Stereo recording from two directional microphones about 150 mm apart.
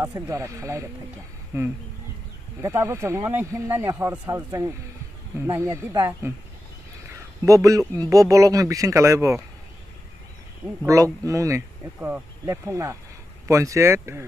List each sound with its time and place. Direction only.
0.1 s speech: 20° right (ahead or behind)
2.6 s speech: 20° right (ahead or behind)
7.4 s speech: 20° right (ahead or behind)
10.8 s speech: 20° right (ahead or behind)